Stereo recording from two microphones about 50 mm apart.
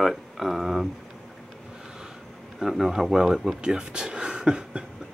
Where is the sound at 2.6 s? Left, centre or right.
Centre.